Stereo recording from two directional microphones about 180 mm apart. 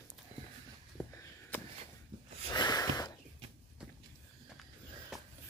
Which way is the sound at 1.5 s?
10° left (ahead or behind).